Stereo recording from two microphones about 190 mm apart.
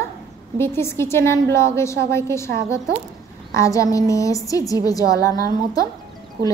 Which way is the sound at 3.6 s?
15° left (ahead or behind).